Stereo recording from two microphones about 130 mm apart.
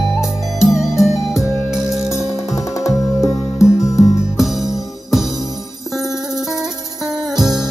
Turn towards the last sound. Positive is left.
turn(degrees=0)  # may be behind; listen again after turning